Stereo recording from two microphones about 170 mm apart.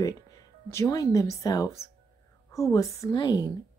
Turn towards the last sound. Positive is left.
turn(degrees=25)  # may be behind; listen again after turning